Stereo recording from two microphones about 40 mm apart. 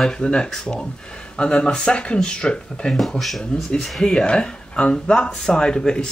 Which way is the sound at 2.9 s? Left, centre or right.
Centre.